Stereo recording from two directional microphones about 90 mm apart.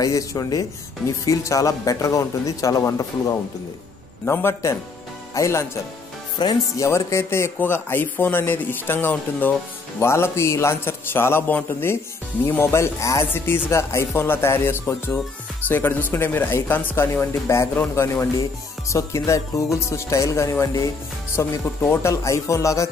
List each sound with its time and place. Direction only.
0.0 s speech: 40° left (ahead or behind)
4.3 s speech: 25° left (ahead or behind)
6.4 s speech: 50° left (ahead or behind)
6.8 s speech: 30° left (ahead or behind)
21.6 s speech: 25° left (ahead or behind)
22.1 s speech: 35° left (ahead or behind)